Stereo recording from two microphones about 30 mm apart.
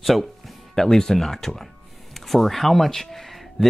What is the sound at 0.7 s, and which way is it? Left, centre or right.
Speech, centre.